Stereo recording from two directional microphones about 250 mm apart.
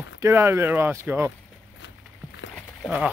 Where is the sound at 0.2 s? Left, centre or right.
Centre.